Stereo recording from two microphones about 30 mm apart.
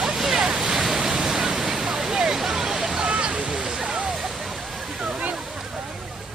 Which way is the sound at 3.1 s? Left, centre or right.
Right.